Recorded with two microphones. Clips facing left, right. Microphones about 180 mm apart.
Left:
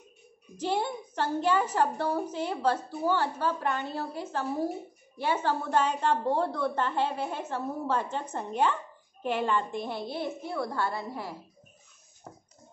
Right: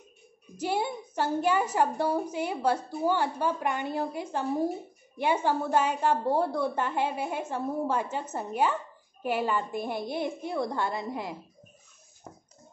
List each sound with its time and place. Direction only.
0.6 s a woman's voice: 10° right (ahead or behind)